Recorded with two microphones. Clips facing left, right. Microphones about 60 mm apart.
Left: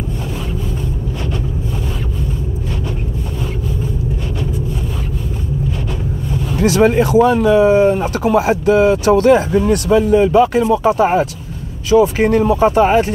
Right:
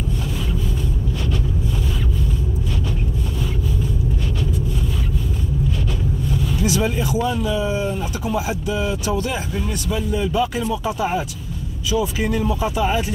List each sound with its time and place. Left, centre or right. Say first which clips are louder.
6.5 s speech: left 11 dB; left